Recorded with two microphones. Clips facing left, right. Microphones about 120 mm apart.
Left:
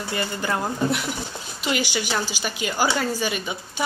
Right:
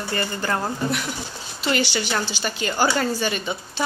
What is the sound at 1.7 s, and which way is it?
A woman's voice, 10° left (ahead or behind).